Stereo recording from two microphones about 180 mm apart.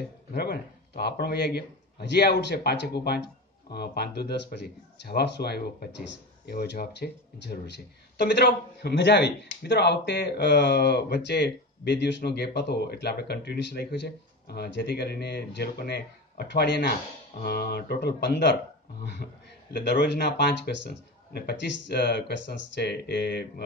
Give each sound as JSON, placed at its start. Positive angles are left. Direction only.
{"t": 0.3, "sound": "a man's voice", "side_deg": 60}
{"t": 19.7, "sound": "a man's voice", "side_deg": 70}